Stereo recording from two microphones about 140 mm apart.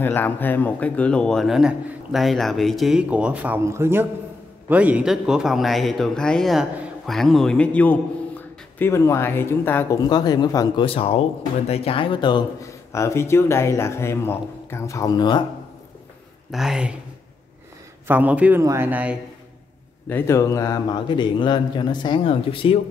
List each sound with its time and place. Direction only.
0.0 s speech: 15° left (ahead or behind)
10.0 s speech: 30° left (ahead or behind)
10.9 s speech: 45° left (ahead or behind)
12.9 s speech: 20° left (ahead or behind)
16.5 s speech: 5° right (ahead or behind)
18.0 s a man's voice: 10° right (ahead or behind)
18.6 s speech: 25° right (ahead or behind)
18.9 s a man's voice: 10° right (ahead or behind)
20.1 s speech: 15° left (ahead or behind); by 22.8 s 40° left (ahead or behind)